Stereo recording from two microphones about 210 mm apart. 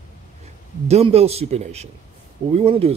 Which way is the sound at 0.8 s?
30° right (ahead or behind).